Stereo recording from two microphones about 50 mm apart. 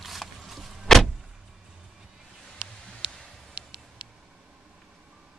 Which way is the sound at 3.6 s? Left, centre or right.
Right.